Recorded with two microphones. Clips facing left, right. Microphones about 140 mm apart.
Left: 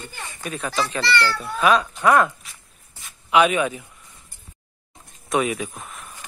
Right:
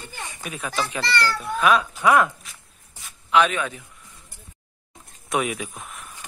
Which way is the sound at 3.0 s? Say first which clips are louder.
Left 2 dB; 10° left (ahead or behind).